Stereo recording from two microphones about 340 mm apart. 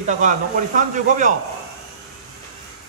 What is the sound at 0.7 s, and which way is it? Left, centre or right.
Speech, right.